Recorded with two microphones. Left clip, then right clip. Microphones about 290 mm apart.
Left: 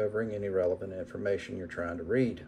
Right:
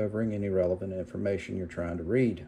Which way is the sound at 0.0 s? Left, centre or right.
Right.